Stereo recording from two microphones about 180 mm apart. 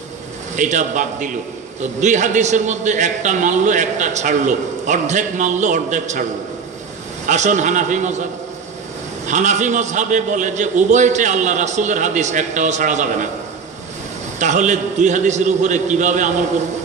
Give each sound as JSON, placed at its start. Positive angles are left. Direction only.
{"t": 0.6, "sound": "a man's voice", "side_deg": -45}
{"t": 7.2, "sound": "a man's voice", "side_deg": -40}
{"t": 9.3, "sound": "a man's voice", "side_deg": -40}
{"t": 14.4, "sound": "a man's voice", "side_deg": -45}